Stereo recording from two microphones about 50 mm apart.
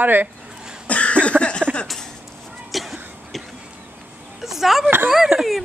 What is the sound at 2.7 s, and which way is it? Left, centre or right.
Cough, centre.